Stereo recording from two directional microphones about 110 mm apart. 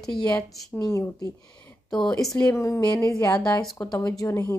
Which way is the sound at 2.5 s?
25° left (ahead or behind).